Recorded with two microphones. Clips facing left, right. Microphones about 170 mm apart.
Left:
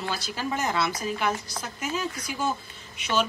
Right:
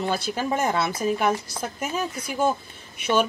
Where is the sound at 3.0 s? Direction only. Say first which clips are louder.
Right 4 dB; 55° right (ahead or behind).